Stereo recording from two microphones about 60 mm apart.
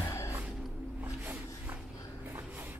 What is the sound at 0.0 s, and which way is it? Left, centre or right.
Music, left.